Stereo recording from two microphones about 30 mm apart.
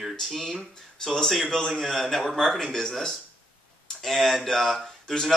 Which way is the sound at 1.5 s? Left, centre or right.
Left.